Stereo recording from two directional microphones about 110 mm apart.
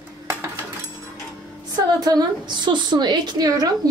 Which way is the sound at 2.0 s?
40° right (ahead or behind).